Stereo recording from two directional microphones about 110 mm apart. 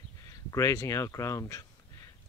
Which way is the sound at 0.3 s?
30° left (ahead or behind).